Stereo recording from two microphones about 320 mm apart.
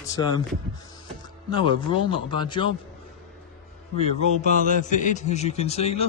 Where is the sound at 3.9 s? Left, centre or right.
Left.